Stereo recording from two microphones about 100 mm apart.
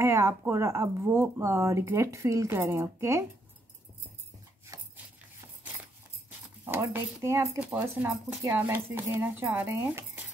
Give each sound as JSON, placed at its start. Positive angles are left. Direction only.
{"t": 0.0, "sound": "speech", "side_deg": -30}
{"t": 6.6, "sound": "speech", "side_deg": -20}